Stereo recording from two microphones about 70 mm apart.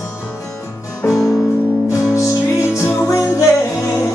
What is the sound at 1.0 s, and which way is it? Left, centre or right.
Music, centre.